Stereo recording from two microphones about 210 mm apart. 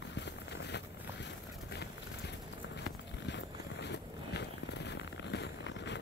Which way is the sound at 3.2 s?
55° left (ahead or behind).